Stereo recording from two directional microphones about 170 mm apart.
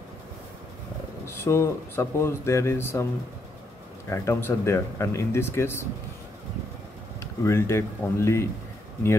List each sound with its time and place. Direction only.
1.2 s speech: 15° left (ahead or behind)
4.1 s speech: 15° left (ahead or behind)
7.2 s speech: 15° left (ahead or behind)